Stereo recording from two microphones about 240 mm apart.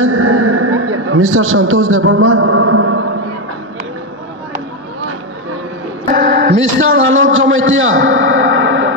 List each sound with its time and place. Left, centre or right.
0.0 s a man's voice: right
6.1 s a man's voice: right